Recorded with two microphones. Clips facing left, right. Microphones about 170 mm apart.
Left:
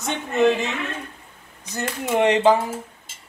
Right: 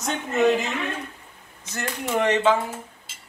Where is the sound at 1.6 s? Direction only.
15° left (ahead or behind).